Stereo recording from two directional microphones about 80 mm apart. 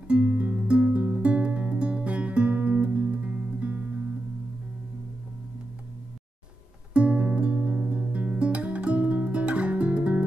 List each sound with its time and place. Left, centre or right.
0.1 s music: centre
6.9 s music: centre